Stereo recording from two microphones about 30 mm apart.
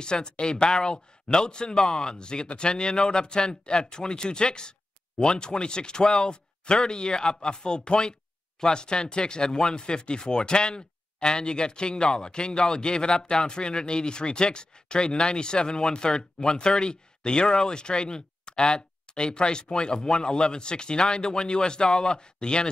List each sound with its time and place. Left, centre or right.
0.0 s speech: left